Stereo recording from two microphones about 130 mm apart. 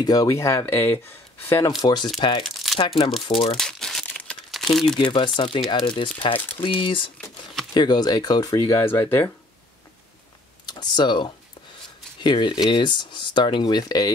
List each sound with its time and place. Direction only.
0.0 s speech: 30° left (ahead or behind)
1.8 s speech: 35° left (ahead or behind)
2.4 s crumpling: centre (ahead or behind)
3.3 s speech: 50° left (ahead or behind)
3.5 s crumpling: 5° left (ahead or behind)
5.1 s speech: 40° left (ahead or behind); by 9.0 s 20° left (ahead or behind)
10.7 s speech: 35° left (ahead or behind)